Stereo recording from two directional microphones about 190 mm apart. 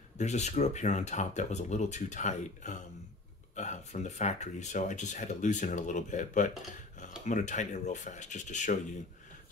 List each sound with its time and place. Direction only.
0.2 s speech: 35° left (ahead or behind)